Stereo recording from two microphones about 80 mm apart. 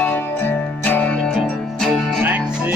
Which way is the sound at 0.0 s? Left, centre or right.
Left.